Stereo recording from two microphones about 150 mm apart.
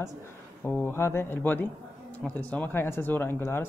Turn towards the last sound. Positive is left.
turn(degrees=15)  # may be behind; listen again after turning